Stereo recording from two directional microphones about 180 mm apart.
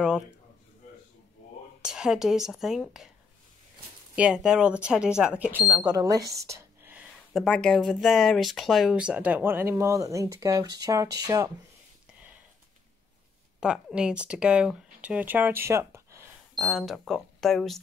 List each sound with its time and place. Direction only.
1.8 s speech: 5° right (ahead or behind)
4.1 s speech: 5° right (ahead or behind); by 6.3 s 20° right (ahead or behind)
6.4 s whispering: 15° right (ahead or behind)
7.3 s speech: 5° left (ahead or behind); by 11.5 s 20° right (ahead or behind)
13.6 s speech: 5° right (ahead or behind)
16.5 s speech: centre (ahead or behind)